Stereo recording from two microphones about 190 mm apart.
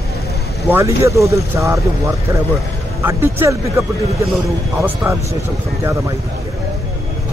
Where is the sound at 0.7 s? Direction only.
15° right (ahead or behind).